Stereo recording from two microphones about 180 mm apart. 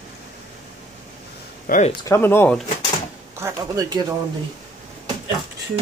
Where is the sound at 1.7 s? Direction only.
55° left (ahead or behind).